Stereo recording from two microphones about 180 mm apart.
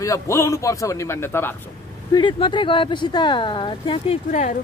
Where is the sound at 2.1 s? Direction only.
25° left (ahead or behind).